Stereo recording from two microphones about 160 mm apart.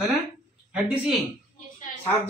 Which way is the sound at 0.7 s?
5° right (ahead or behind).